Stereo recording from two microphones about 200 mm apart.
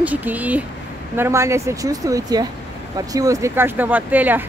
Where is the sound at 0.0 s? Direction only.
10° right (ahead or behind).